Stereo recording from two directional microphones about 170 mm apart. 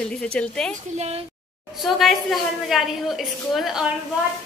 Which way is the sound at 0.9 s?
40° right (ahead or behind).